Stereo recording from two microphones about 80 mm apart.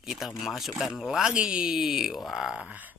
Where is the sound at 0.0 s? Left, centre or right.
Centre; by 3.0 s right.